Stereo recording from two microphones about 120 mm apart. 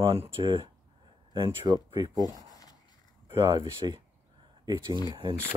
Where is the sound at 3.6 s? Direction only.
45° right (ahead or behind).